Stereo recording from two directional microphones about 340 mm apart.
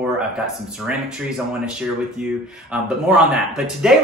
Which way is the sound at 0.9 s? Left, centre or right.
Centre.